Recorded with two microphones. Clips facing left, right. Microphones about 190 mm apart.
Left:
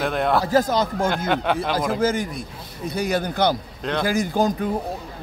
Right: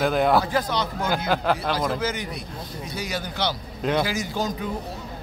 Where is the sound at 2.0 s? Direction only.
50° left (ahead or behind).